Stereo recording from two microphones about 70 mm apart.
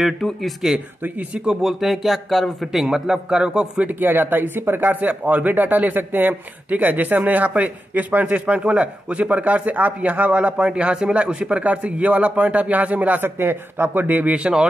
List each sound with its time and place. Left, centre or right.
0.0 s speech: centre
4.0 s speech: right; by 14.7 s centre